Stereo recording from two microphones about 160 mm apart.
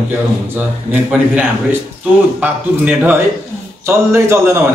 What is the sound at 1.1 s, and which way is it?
A man's voice, 10° right (ahead or behind).